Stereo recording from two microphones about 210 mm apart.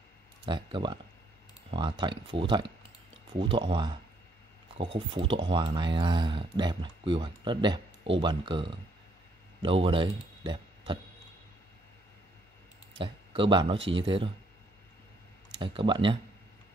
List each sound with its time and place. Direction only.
0.5 s speech: 25° right (ahead or behind)
4.9 s speech: 25° right (ahead or behind)
12.9 s speech: 25° right (ahead or behind)
15.6 s speech: 25° right (ahead or behind)